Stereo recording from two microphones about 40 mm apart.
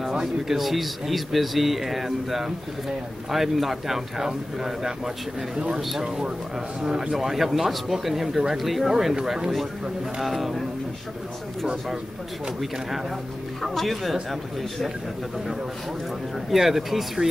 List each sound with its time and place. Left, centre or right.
0.5 s speech: centre
6.8 s a man's voice: right
7.2 s speech: centre
10.2 s speech: centre
11.6 s speech: centre
13.6 s speech: centre
16.4 s speech: centre